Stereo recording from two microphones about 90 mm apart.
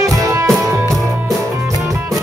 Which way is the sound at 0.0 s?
35° right (ahead or behind).